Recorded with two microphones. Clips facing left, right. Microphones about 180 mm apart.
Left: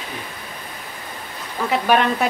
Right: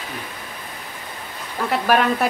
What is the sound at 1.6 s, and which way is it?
Speech, centre (ahead or behind).